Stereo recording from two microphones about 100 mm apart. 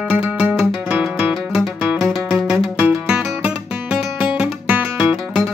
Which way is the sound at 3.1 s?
15° right (ahead or behind).